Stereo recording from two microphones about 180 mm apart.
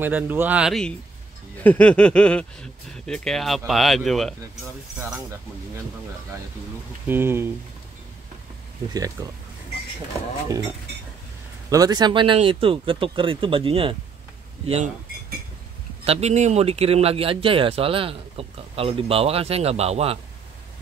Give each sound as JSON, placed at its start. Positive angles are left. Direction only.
{"t": 0.0, "sound": "speech", "side_deg": -10}
{"t": 7.1, "sound": "speech", "side_deg": -15}
{"t": 9.2, "sound": "speech", "side_deg": -20}
{"t": 11.7, "sound": "speech", "side_deg": -20}
{"t": 16.1, "sound": "speech", "side_deg": -35}